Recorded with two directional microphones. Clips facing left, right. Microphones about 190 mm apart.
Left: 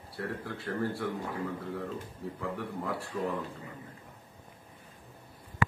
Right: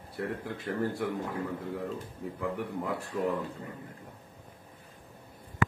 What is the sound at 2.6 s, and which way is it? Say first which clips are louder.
Speech: right 2 dB; 20° right (ahead or behind).